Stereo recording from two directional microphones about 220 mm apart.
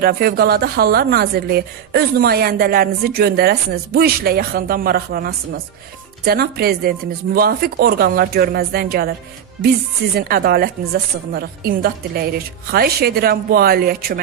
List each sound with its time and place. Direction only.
0.0 s a woman's voice: 45° right (ahead or behind)
10.1 s a woman's voice: 45° right (ahead or behind)